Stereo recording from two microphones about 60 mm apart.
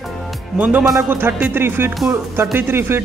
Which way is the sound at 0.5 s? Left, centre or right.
Right.